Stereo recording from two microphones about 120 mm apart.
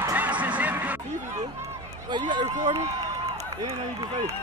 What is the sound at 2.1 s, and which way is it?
Run, 40° right (ahead or behind).